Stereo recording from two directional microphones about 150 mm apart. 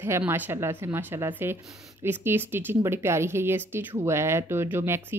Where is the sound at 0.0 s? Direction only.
15° right (ahead or behind).